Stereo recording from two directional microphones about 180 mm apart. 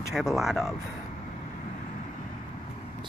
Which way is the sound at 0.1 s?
Centre (ahead or behind).